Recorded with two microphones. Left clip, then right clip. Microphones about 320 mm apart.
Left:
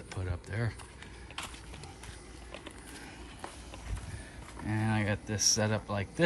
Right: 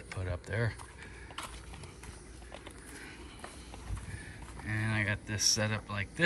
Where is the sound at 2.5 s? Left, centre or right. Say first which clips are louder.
Left 2 dB; centre.